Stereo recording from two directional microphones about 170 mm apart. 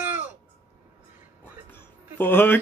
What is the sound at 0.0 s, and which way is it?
Babbling, 10° right (ahead or behind).